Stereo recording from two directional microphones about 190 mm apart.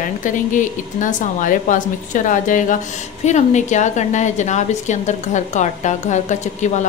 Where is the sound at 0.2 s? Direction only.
45° left (ahead or behind).